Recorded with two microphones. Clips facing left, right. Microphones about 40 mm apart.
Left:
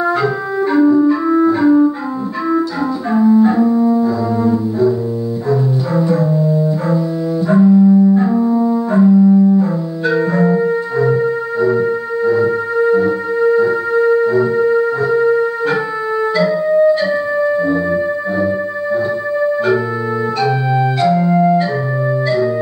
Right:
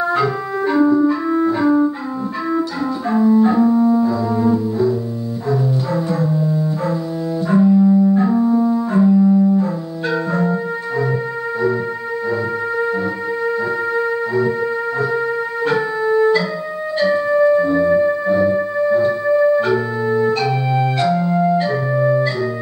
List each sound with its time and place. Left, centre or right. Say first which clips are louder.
0.2 s music: left 2 dB; centre
3.3 s music: left 2 dB; centre
5.5 s music: left 2 dB; centre
7.4 s music: left 3 dB; centre
9.5 s music: left 4 dB; centre
11.6 s music: left 6 dB; centre
14.4 s music: left 6 dB; centre
20.3 s organ: left 3 dB; centre
21.1 s organ: left 4 dB; centre
21.5 s organ: left 1 dB; centre